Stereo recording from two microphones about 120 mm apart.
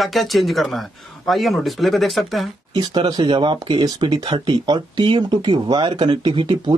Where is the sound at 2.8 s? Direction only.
35° right (ahead or behind).